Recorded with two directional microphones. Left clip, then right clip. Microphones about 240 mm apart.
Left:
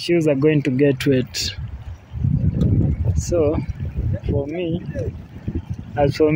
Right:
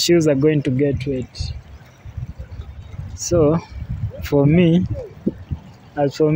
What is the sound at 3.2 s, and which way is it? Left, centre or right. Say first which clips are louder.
Speech: right 3 dB; centre.